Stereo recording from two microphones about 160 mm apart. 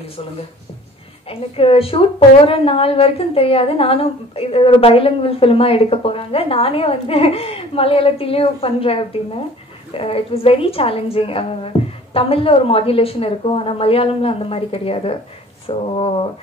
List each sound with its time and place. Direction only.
1.3 s a woman's voice: 35° left (ahead or behind)